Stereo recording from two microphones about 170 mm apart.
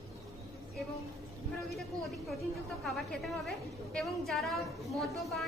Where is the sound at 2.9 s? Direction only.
Centre (ahead or behind).